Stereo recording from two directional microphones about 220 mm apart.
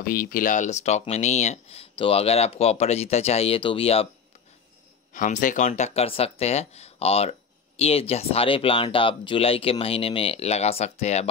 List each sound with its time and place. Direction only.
0.0 s speech: 40° left (ahead or behind)
5.1 s speech: 35° left (ahead or behind)